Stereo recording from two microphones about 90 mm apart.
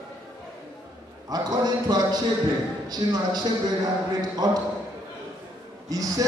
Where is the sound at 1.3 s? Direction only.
45° right (ahead or behind).